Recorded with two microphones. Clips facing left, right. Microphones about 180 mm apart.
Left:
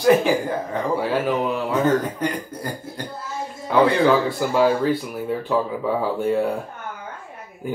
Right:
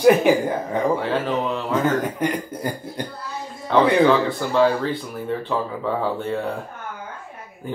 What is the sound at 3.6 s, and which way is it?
Speech, 10° left (ahead or behind).